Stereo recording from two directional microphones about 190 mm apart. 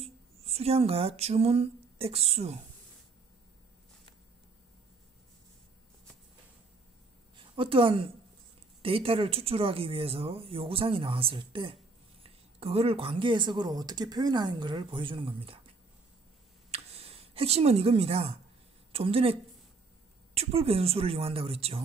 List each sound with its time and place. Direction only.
0.0 s speech: 30° right (ahead or behind)
7.3 s a woman's voice: 25° right (ahead or behind)
16.7 s speech: 30° right (ahead or behind)
20.3 s speech: 30° right (ahead or behind)